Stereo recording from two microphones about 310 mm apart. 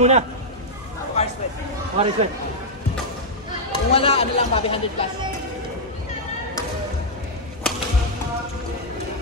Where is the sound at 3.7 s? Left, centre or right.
Centre.